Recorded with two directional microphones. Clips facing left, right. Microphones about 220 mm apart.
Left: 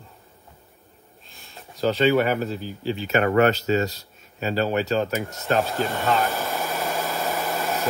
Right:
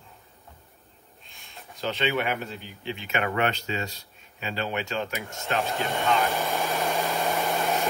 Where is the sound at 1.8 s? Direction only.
40° left (ahead or behind).